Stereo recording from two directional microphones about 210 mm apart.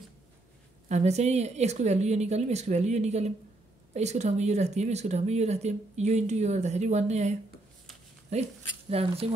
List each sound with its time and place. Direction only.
0.8 s speech: 30° right (ahead or behind)